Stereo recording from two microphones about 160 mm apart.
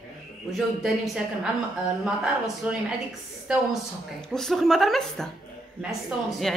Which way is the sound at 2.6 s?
5° right (ahead or behind).